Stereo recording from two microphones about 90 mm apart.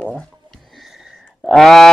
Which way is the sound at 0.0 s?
15° left (ahead or behind).